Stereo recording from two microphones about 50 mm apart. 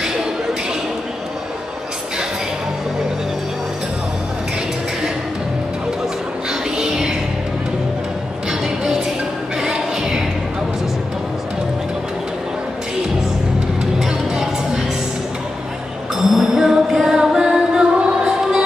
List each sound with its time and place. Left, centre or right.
6.8 s music: centre
8.5 s music: centre
13.9 s music: centre
16.2 s music: centre